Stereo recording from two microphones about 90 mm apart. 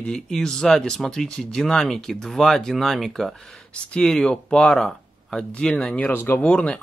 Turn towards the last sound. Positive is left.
turn(degrees=15)  # may be behind; listen again after turning